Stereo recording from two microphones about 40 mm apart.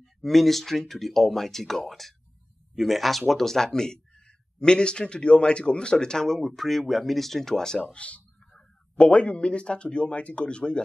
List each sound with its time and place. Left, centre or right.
0.0 s speech: centre
7.8 s speech: left